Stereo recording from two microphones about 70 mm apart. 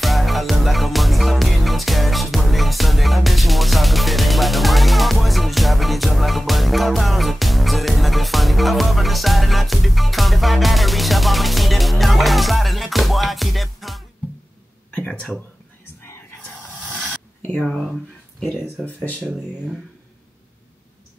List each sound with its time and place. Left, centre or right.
0.0 s music: centre
14.9 s speech: left
15.8 s whispering: left
16.8 s a sound: centre
17.6 s music: centre